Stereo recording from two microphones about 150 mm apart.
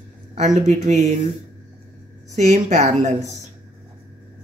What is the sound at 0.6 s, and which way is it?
Speech, 50° right (ahead or behind).